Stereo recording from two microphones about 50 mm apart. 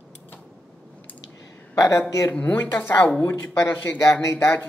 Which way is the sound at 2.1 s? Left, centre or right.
Left.